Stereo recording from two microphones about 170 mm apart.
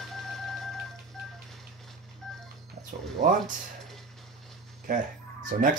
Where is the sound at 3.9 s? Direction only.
Centre (ahead or behind).